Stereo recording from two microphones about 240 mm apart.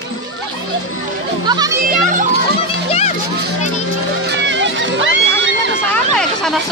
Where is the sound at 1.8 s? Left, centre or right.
Right.